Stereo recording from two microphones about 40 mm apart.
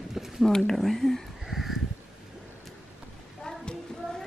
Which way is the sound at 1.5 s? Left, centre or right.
Centre.